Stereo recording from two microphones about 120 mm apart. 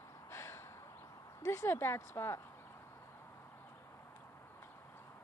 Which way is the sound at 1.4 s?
25° left (ahead or behind).